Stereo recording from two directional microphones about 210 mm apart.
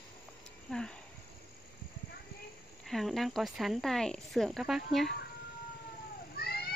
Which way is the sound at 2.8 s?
Centre (ahead or behind).